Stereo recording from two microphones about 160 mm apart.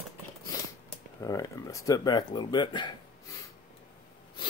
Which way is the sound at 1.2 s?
20° left (ahead or behind).